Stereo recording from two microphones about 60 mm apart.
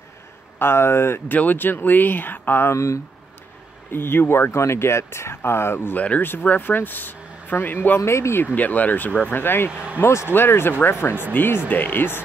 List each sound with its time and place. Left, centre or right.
0.6 s speech: left
1.3 s speech: left
2.7 s speech: left
3.9 s speech: left
5.9 s speech: left
8.0 s speech: left
8.5 s speech: left
9.7 s speech: centre
9.9 s speech: left